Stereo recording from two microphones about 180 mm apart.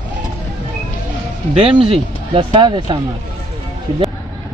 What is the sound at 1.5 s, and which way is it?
Speech, 30° right (ahead or behind).